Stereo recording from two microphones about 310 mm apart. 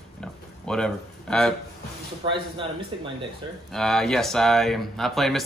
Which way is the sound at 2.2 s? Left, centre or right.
Centre.